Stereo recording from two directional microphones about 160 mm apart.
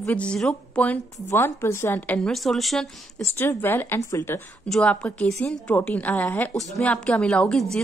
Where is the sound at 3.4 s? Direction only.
15° left (ahead or behind).